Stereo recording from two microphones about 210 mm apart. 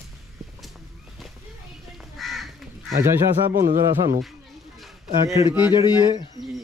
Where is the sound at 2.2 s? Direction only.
Centre (ahead or behind).